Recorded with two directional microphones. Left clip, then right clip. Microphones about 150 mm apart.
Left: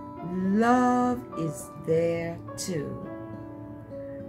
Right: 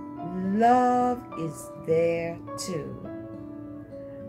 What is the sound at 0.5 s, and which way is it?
Music, 20° left (ahead or behind).